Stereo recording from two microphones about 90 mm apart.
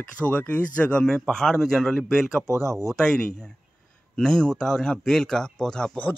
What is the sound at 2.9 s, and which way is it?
Speech, 5° left (ahead or behind).